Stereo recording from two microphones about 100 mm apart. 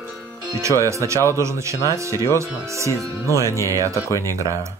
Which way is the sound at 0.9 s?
30° right (ahead or behind).